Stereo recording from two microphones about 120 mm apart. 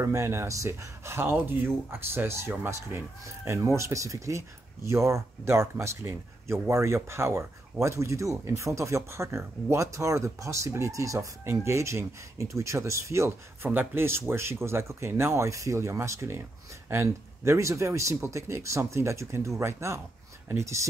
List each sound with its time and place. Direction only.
0.0 s speech: 25° right (ahead or behind)